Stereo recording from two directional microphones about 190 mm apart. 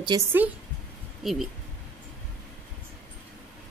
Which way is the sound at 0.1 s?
20° right (ahead or behind).